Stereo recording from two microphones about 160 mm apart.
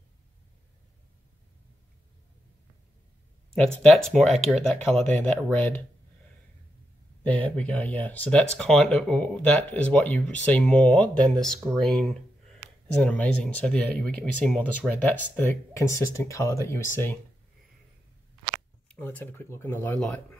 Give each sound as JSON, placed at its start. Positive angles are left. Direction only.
{"t": 3.8, "sound": "speech", "side_deg": 5}
{"t": 7.2, "sound": "speech", "side_deg": 10}
{"t": 18.9, "sound": "speech", "side_deg": 10}